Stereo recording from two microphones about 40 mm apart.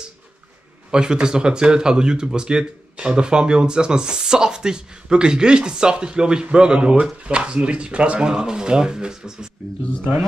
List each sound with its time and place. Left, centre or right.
0.9 s speech: right